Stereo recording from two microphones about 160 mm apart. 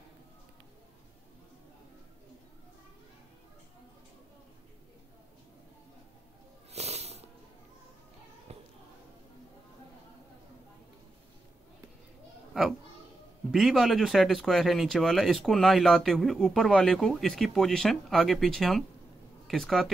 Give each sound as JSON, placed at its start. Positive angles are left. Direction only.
{"t": 6.7, "sound": "snoring", "side_deg": -40}
{"t": 8.5, "sound": "a sound", "side_deg": -40}
{"t": 13.5, "sound": "speech", "side_deg": 0}